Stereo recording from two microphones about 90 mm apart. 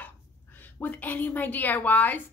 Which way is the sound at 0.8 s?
20° left (ahead or behind).